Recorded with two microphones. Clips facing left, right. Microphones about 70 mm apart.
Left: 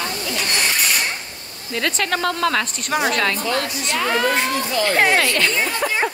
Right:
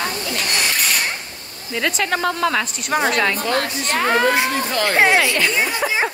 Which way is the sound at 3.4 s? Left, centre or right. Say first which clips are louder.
Right 2 dB; right.